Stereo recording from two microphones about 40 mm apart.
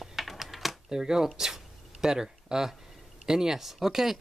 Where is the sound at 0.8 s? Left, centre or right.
Centre.